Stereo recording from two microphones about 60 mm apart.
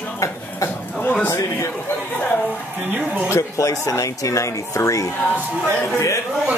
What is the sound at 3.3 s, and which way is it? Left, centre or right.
Speech, left.